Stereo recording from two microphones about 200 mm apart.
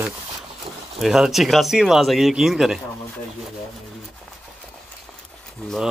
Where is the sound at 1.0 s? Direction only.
Centre (ahead or behind).